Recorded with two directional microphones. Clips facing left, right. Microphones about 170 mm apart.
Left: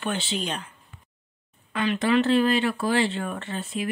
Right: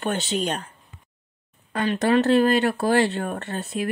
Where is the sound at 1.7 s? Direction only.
40° right (ahead or behind).